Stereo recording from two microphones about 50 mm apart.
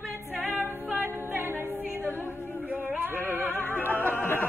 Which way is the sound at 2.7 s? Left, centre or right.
Right.